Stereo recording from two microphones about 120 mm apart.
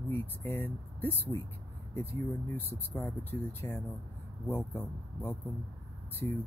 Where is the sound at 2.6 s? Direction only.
20° left (ahead or behind).